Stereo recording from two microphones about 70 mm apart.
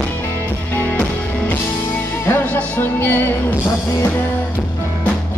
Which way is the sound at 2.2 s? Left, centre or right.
Left.